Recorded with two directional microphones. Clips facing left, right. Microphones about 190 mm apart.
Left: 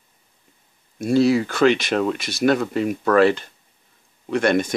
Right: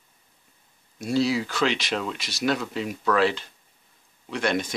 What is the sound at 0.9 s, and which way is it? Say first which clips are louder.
Speech: left 7 dB; 50° left (ahead or behind).